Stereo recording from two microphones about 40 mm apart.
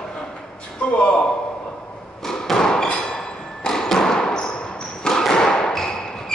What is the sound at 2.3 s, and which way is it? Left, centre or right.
Thump, centre.